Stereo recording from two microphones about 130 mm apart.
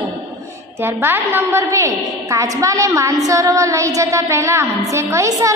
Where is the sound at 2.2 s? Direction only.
25° right (ahead or behind).